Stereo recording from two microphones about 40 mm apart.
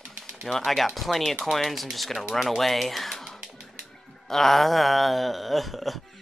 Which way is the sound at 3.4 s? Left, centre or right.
Centre.